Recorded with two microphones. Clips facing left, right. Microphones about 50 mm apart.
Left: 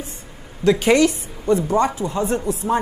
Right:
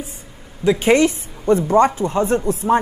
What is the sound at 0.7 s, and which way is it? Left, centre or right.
A woman's voice, right.